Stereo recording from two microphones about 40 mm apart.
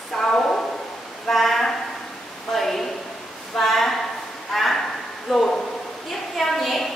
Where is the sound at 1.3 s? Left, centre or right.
Centre.